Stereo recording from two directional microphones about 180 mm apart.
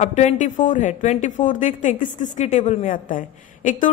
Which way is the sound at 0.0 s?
40° left (ahead or behind).